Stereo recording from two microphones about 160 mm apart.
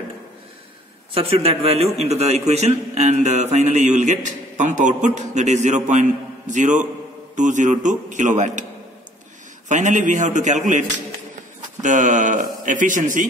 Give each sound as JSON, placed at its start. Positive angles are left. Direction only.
{"t": 1.1, "sound": "a man's voice", "side_deg": -35}
{"t": 9.7, "sound": "a man's voice", "side_deg": -50}
{"t": 11.8, "sound": "a man's voice", "side_deg": -50}